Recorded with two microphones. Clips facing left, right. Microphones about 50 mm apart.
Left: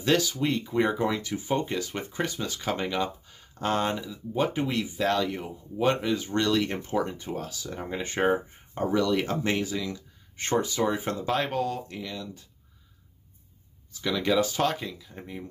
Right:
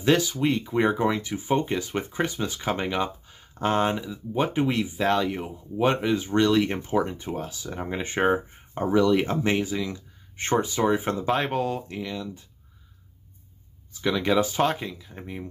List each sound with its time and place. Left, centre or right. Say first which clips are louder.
0.0 s speech: right 3 dB; right
14.0 s speech: right 2 dB; right